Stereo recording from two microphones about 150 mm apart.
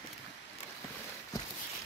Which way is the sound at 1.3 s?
25° left (ahead or behind).